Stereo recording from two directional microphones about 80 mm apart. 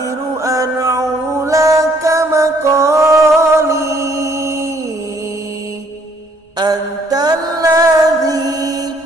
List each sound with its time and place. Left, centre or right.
0.4 s music: right
6.6 s mantra: right